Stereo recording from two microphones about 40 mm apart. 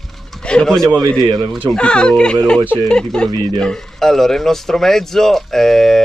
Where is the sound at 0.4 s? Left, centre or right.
Left.